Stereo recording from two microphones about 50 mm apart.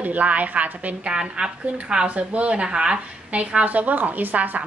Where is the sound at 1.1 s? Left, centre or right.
Centre.